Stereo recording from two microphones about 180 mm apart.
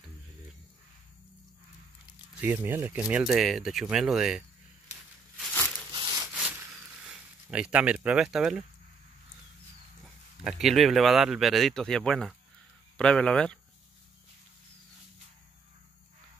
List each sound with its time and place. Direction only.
2.4 s speech: 10° right (ahead or behind)
5.9 s sawing: 25° right (ahead or behind)
6.3 s a sound: 5° right (ahead or behind)
7.4 s speech: 5° right (ahead or behind)
10.4 s speech: centre (ahead or behind)